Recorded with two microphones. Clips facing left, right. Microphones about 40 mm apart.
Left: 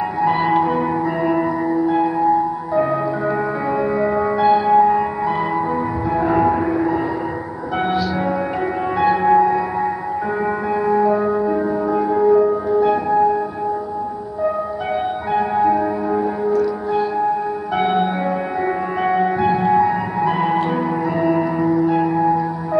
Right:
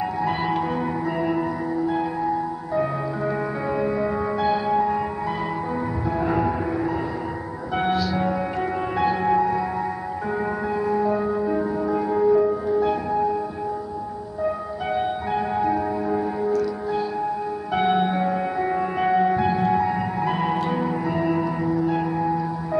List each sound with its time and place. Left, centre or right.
0.2 s music: centre
6.1 s train: centre
7.8 s music: centre
10.7 s music: centre
15.3 s music: centre